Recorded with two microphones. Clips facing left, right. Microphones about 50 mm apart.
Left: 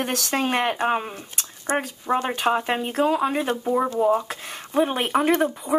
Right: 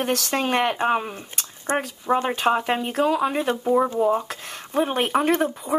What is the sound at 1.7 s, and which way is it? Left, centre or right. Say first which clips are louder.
Speech: even; right.